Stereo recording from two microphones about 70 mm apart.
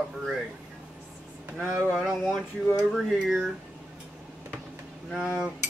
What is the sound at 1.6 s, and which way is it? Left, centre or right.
Speech, right.